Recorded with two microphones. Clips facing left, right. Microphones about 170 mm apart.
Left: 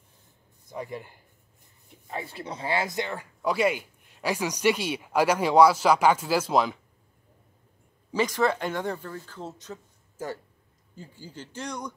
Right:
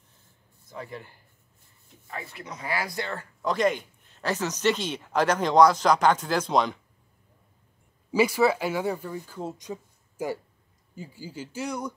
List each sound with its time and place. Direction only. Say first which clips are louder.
0.7 s speech: left 3 dB; 15° left (ahead or behind)
2.0 s speech: left 3 dB; 25° left (ahead or behind); by 6.8 s 5° left (ahead or behind)
8.1 s speech: right 3 dB; 10° right (ahead or behind)